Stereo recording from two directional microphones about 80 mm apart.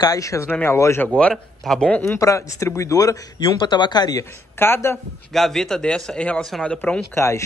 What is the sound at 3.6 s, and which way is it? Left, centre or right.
Speech, left.